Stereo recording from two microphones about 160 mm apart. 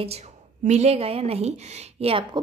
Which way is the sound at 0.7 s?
40° right (ahead or behind).